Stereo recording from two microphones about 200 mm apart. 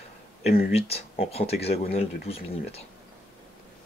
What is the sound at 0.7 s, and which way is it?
Speech, 30° left (ahead or behind).